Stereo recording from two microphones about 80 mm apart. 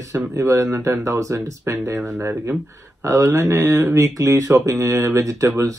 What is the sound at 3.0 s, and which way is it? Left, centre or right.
Speech, right.